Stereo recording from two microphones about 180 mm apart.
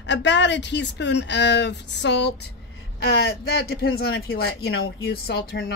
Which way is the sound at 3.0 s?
60° left (ahead or behind).